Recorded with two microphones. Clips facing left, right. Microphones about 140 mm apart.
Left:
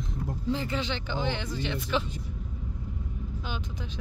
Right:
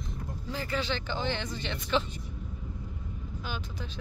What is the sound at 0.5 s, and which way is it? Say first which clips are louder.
Speech: left 1 dB; 20° left (ahead or behind).